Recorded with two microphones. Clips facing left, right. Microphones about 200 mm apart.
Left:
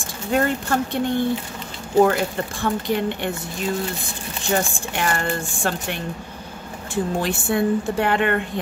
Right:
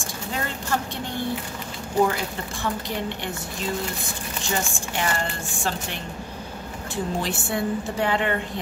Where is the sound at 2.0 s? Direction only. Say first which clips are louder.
Left 5 dB; 55° left (ahead or behind).